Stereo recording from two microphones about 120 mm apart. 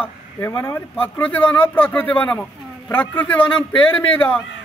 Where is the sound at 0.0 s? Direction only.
20° left (ahead or behind).